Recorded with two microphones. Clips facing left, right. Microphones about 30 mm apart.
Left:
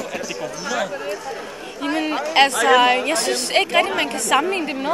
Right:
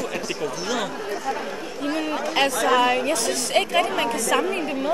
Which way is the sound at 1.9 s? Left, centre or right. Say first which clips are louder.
Left 3 dB; left.